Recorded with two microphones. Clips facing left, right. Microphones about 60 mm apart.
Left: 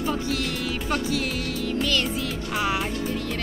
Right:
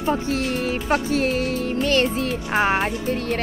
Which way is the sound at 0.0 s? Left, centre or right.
Right.